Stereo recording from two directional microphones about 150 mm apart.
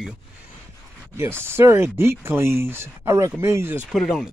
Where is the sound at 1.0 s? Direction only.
15° right (ahead or behind).